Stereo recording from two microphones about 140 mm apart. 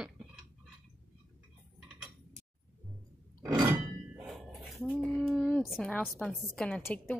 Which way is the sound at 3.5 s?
30° right (ahead or behind).